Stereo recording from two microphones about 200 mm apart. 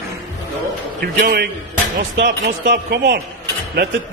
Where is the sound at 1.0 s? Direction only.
50° right (ahead or behind).